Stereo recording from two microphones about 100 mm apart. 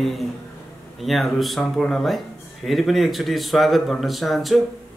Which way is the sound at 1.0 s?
Centre (ahead or behind).